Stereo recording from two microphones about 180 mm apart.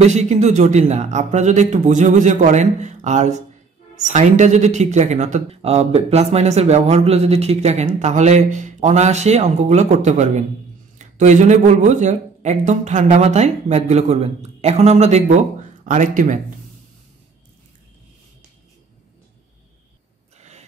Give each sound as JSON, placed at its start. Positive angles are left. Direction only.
{"t": 0.0, "sound": "speech", "side_deg": -40}